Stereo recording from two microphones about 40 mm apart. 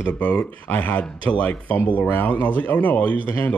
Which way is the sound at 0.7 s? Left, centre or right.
Left.